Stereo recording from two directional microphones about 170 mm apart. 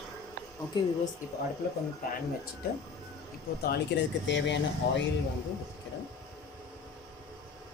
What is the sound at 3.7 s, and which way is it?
Speech, 90° left.